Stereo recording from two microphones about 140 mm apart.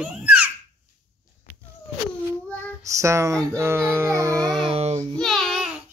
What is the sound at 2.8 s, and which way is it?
Music, 20° right (ahead or behind).